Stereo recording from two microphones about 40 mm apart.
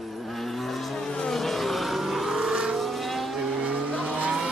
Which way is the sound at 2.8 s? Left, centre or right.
Centre.